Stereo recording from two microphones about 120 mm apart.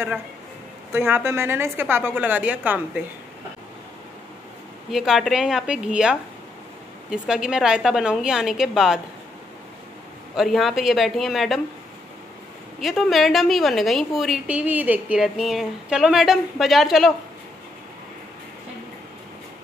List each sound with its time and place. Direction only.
0.9 s a woman's voice: 20° right (ahead or behind)
4.9 s speech: centre (ahead or behind)
10.3 s speech: centre (ahead or behind)
12.8 s speech: centre (ahead or behind)
14.5 s speech: 15° right (ahead or behind)